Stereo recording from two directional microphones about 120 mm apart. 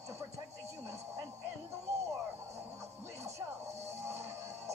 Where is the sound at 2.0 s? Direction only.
25° right (ahead or behind).